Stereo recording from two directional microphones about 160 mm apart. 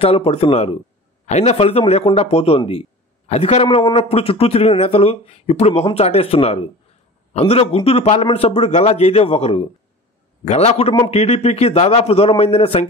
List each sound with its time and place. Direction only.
0.0 s a man's voice: 40° left (ahead or behind)